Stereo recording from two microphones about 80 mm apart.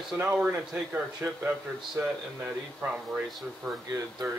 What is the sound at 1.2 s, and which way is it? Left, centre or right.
Speech, right.